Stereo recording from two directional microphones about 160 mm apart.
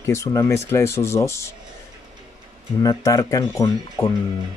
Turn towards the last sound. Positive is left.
turn(degrees=15)  # may be behind; listen again after turning